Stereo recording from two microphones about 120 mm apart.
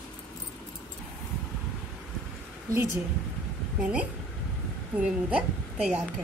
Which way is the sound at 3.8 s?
10° right (ahead or behind).